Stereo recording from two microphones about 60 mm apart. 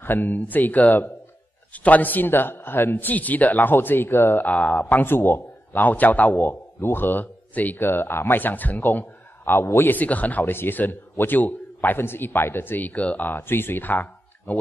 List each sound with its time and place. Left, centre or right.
0.0 s a man's voice: left
4.5 s a man's voice: left